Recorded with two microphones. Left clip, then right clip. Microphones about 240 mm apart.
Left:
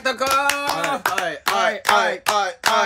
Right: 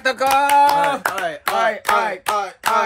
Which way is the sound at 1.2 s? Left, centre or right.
Centre.